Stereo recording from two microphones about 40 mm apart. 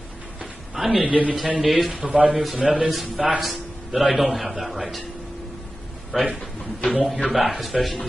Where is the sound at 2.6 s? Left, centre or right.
Right.